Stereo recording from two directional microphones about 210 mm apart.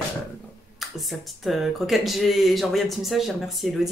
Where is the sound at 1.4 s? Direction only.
Centre (ahead or behind).